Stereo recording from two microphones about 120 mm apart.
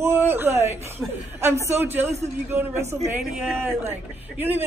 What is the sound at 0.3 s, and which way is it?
Speech, 20° right (ahead or behind).